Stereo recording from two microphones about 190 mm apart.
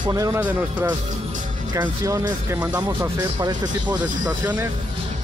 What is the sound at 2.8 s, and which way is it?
Speech, 20° right (ahead or behind).